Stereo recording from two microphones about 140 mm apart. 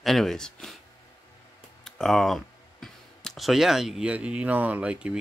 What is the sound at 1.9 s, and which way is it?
Speech, 5° left (ahead or behind).